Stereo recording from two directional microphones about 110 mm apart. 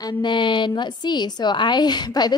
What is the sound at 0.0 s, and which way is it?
A woman's voice, 45° left (ahead or behind).